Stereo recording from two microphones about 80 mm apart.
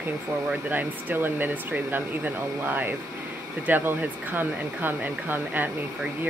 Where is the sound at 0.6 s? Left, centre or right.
Right.